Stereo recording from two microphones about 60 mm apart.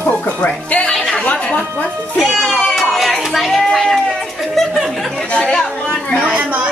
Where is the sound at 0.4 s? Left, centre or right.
Centre.